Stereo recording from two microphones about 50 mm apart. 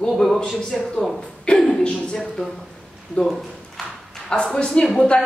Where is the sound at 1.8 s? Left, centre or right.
Centre.